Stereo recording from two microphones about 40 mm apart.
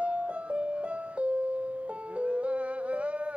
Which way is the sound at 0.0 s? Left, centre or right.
Right.